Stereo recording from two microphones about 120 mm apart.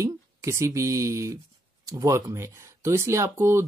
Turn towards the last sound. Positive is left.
turn(degrees=-20)  # may be behind; listen again after turning